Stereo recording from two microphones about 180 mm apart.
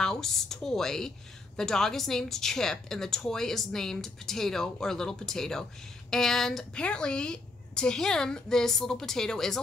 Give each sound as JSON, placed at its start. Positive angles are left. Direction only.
{"t": 0.0, "sound": "speech", "side_deg": 5}